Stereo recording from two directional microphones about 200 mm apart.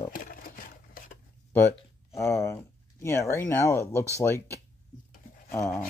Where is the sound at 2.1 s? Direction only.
15° left (ahead or behind).